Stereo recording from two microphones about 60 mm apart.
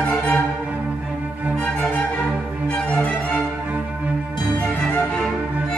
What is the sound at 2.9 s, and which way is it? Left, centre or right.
Music, centre.